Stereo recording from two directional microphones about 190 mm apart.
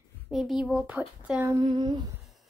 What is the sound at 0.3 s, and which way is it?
A child's voice, centre (ahead or behind).